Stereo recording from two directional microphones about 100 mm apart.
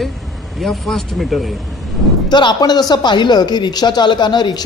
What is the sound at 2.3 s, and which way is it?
Speech, 45° left (ahead or behind).